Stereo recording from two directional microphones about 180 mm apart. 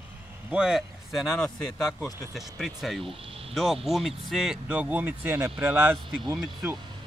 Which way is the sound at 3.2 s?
30° right (ahead or behind).